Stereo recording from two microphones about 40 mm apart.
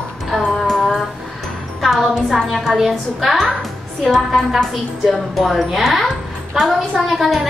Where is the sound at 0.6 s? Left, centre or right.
Centre.